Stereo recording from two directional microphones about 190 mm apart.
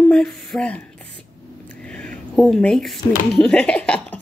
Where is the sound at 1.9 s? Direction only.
5° left (ahead or behind).